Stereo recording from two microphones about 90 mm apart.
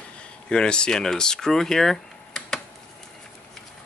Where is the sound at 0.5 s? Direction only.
10° left (ahead or behind).